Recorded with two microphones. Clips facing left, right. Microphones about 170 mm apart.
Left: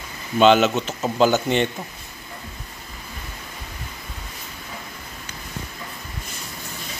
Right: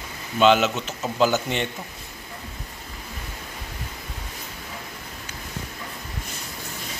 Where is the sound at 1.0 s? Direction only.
35° left (ahead or behind).